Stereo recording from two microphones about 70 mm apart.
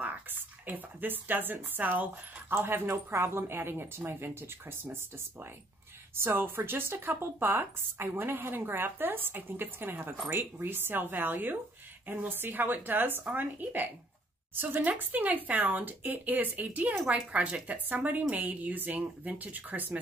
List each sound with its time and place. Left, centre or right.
0.0 s speech: right